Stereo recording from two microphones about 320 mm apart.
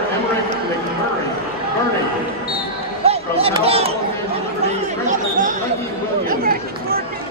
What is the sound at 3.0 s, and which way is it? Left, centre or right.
Chatter, centre.